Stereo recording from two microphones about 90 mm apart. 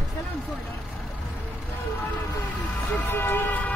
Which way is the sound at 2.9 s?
25° left (ahead or behind).